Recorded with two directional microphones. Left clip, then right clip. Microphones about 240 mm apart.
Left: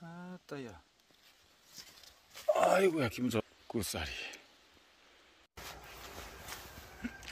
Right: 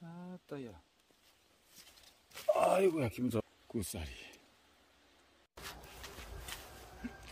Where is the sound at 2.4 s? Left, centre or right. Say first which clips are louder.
Left 1 dB; centre.